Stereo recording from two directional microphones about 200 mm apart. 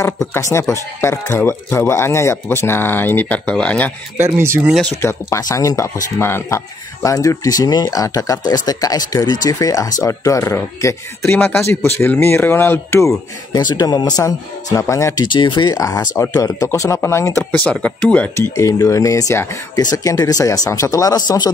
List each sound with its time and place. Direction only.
0.2 s speech: 15° left (ahead or behind)
4.4 s speech: 10° right (ahead or behind)
5.0 s speech: 15° left (ahead or behind)